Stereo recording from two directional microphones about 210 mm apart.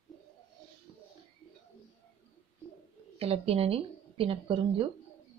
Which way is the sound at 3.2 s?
30° right (ahead or behind).